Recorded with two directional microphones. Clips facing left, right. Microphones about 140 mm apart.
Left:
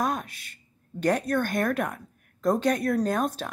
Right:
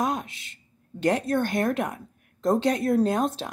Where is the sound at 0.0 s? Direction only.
20° right (ahead or behind).